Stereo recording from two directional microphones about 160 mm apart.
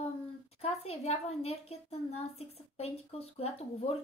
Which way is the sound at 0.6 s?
40° left (ahead or behind).